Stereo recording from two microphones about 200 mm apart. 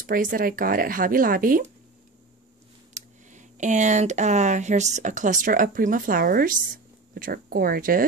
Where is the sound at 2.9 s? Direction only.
35° right (ahead or behind).